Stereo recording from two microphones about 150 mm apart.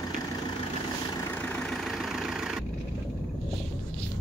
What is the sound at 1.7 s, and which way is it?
Vehicle, centre (ahead or behind).